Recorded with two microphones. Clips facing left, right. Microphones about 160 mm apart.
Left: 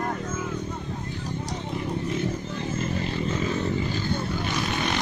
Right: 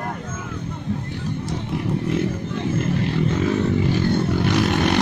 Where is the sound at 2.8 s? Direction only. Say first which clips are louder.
Right 6 dB; 65° right (ahead or behind).